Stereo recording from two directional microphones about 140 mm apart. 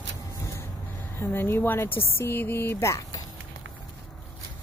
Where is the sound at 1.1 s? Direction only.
15° left (ahead or behind).